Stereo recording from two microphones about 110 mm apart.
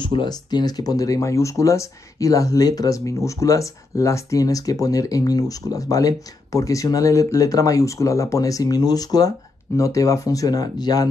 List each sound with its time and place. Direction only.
0.0 s speech: 45° left (ahead or behind)